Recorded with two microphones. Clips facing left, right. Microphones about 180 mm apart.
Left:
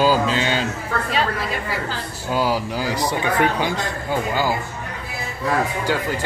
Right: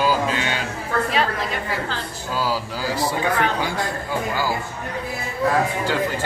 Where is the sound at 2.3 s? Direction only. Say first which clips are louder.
Left 4 dB; 20° left (ahead or behind).